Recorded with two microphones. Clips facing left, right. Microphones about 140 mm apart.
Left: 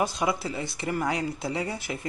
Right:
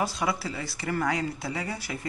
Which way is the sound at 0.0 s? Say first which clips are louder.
Left 2 dB; 20° left (ahead or behind).